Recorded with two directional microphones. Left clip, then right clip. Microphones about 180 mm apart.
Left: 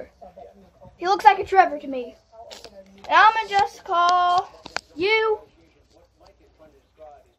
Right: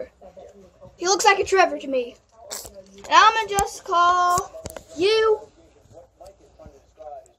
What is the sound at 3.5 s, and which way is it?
Child singing, 45° left (ahead or behind).